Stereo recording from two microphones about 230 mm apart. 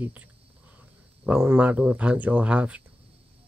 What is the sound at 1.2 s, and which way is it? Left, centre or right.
Speech, centre.